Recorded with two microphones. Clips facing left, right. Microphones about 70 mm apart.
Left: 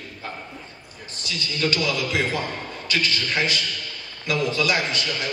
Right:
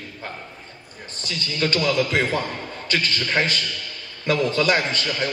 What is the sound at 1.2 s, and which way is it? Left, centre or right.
A man's voice, right.